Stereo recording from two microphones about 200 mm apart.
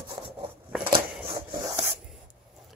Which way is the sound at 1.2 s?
25° right (ahead or behind).